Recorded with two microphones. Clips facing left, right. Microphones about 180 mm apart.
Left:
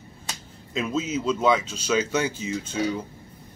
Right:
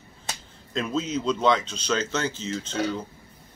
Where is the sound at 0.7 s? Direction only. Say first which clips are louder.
Left 1 dB; 5° left (ahead or behind).